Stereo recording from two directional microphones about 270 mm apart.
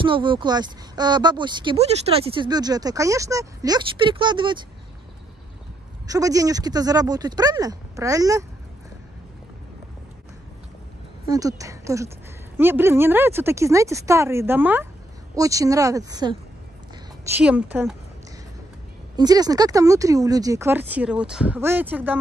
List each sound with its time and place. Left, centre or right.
0.0 s speech: centre
6.0 s speech: centre
11.2 s speech: centre
17.2 s a woman's voice: centre
19.1 s speech: centre